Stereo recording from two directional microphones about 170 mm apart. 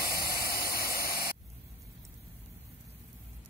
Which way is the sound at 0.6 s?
60° left (ahead or behind).